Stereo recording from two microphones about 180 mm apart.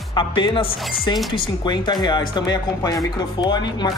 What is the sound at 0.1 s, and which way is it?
Speech, 25° left (ahead or behind).